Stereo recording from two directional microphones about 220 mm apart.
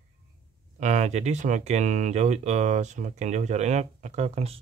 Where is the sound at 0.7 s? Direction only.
30° right (ahead or behind).